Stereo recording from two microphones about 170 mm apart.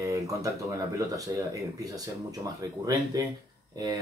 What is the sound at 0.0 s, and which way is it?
Speech, 20° right (ahead or behind).